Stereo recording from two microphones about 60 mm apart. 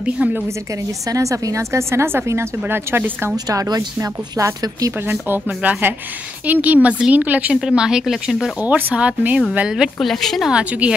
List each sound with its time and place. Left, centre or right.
0.0 s speech: right
1.1 s speech: right
3.4 s speech: right
5.3 s speech: right
7.6 s speech: centre
8.6 s speech: right
9.9 s a woman's voice: centre
10.5 s speech: right